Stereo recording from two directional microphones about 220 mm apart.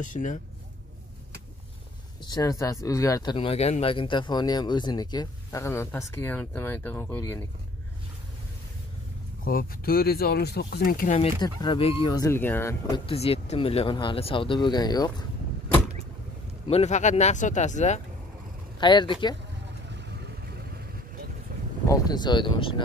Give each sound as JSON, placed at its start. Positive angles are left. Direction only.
{"t": 0.0, "sound": "speech", "side_deg": 35}
{"t": 2.2, "sound": "speech", "side_deg": 15}
{"t": 9.4, "sound": "speech", "side_deg": 40}
{"t": 11.1, "sound": "speech", "side_deg": 20}
{"t": 13.0, "sound": "speech", "side_deg": 25}
{"t": 16.6, "sound": "speech", "side_deg": 30}
{"t": 18.8, "sound": "speech", "side_deg": 20}
{"t": 21.8, "sound": "speech", "side_deg": 15}